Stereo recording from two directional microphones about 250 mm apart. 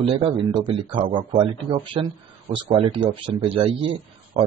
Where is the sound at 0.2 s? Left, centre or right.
Right.